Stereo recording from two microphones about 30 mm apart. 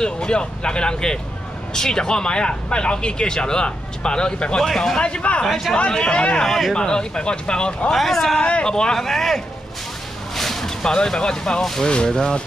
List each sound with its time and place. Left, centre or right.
0.0 s speech: left
4.6 s speech: centre
5.0 s speech: left
6.4 s speech: centre
6.7 s speech: left
7.9 s speech: centre
8.6 s speech: left
8.9 s speech: centre
10.3 s a sound: centre
10.8 s speech: left